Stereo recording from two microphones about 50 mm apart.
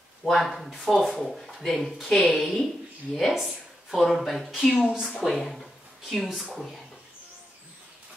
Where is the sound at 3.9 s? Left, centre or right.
Centre.